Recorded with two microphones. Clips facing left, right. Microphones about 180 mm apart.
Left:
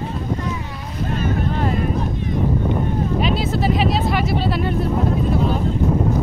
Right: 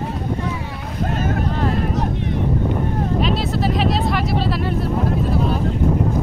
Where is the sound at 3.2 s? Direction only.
Centre (ahead or behind).